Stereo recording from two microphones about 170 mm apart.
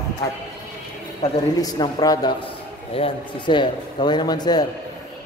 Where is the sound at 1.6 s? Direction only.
25° left (ahead or behind).